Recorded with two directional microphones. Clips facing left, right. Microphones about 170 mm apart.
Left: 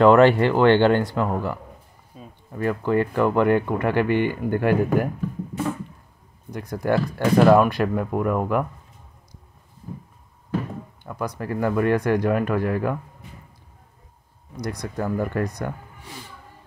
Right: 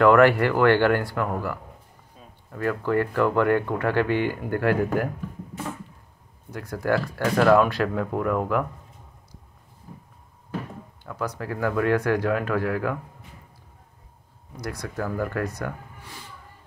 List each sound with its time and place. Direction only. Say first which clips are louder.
0.0 s speech: left 2 dB; 25° left (ahead or behind)
2.1 s a sound: left 7 dB; 5° left (ahead or behind)
2.5 s speech: left 2 dB; 20° left (ahead or behind)
6.5 s speech: left 2 dB; 15° left (ahead or behind)
11.1 s speech: left 2 dB; 15° left (ahead or behind)
14.6 s speech: left 3 dB; 20° left (ahead or behind)